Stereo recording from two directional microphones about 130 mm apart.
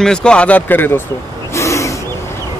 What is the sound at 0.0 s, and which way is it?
Speech, 5° left (ahead or behind).